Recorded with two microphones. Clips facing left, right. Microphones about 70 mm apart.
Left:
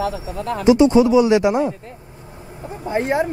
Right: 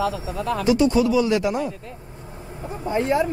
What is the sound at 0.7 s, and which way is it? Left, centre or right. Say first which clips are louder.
Speech: left 6 dB; left.